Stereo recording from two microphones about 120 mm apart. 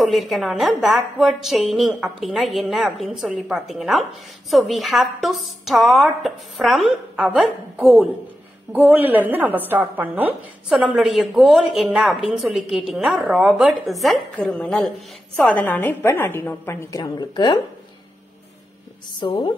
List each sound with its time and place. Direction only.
0.0 s a woman's voice: centre (ahead or behind)
11.0 s a woman's voice: centre (ahead or behind); by 16.9 s 20° left (ahead or behind)
16.9 s a woman's voice: 35° left (ahead or behind)
19.1 s a woman's voice: 45° left (ahead or behind)